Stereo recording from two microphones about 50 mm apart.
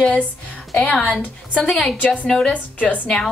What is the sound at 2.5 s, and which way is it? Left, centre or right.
Speech, left.